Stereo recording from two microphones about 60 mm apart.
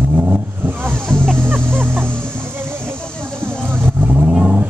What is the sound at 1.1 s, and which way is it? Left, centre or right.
Vehicle, centre.